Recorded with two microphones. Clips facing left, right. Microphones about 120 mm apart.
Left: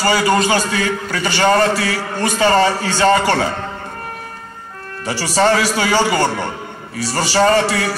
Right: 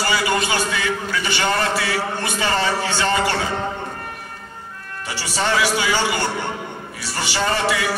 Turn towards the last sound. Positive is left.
turn(degrees=40)  # may be behind; listen again after turning